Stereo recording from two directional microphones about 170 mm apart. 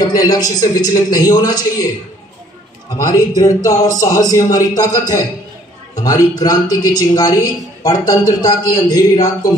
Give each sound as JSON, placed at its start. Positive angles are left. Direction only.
{"t": 0.1, "sound": "speech", "side_deg": 20}
{"t": 3.0, "sound": "speech", "side_deg": 20}